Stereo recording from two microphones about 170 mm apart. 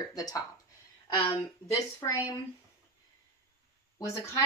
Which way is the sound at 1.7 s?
20° left (ahead or behind).